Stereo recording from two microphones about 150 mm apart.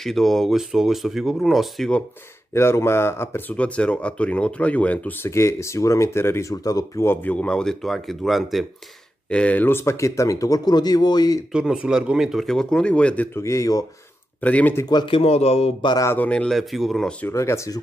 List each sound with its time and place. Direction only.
0.0 s a man's voice: centre (ahead or behind)
2.5 s speech: 15° left (ahead or behind)
11.5 s a man's voice: 5° right (ahead or behind); by 13.8 s 20° left (ahead or behind)
14.4 s speech: 10° left (ahead or behind)
14.9 s speech: 30° left (ahead or behind)
15.8 s speech: 30° left (ahead or behind)
16.1 s a man's voice: 10° left (ahead or behind)
17.3 s speech: 20° left (ahead or behind)